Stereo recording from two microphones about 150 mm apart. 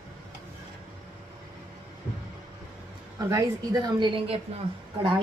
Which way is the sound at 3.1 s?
25° right (ahead or behind).